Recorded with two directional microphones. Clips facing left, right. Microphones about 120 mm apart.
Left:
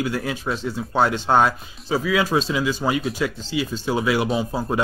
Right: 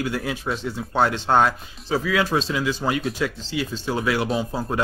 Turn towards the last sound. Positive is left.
turn(degrees=10)  # may be behind; listen again after turning